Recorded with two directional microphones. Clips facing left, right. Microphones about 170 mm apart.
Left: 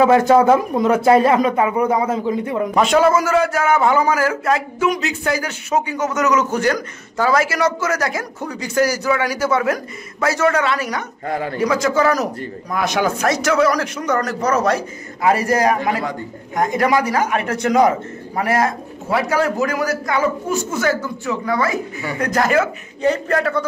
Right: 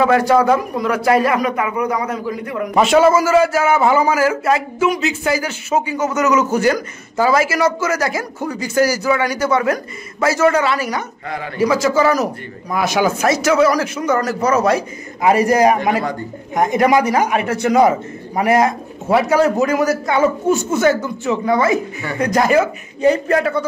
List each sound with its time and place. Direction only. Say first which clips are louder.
0.0 s a man's voice: left 1 dB; 25° left (ahead or behind)
2.7 s a man's voice: right 3 dB; 5° right (ahead or behind)
11.2 s a man's voice: left 4 dB; 40° left (ahead or behind)
11.5 s a man's voice: right 3 dB; 5° right (ahead or behind)
18.3 s a man's voice: right 4 dB; 15° right (ahead or behind)